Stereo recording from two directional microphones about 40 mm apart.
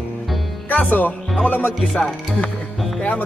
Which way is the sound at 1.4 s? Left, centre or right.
Left.